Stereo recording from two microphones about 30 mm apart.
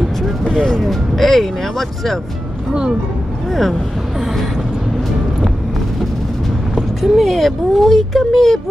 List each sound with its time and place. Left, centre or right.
0.5 s speech: centre
0.8 s speech: centre
6.7 s speech: centre